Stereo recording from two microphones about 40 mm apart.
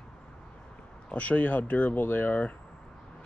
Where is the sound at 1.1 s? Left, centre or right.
Left.